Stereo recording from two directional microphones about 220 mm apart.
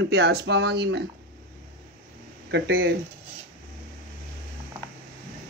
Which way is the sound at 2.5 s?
50° right (ahead or behind).